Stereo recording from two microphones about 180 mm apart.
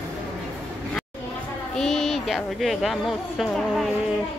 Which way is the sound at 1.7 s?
Centre (ahead or behind).